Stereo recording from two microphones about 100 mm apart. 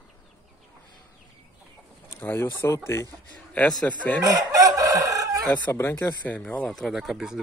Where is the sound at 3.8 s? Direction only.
15° left (ahead or behind).